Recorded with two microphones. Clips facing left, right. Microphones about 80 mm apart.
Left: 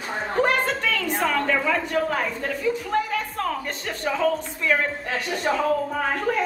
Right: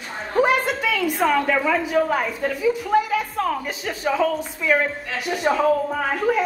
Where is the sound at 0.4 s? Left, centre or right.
Centre.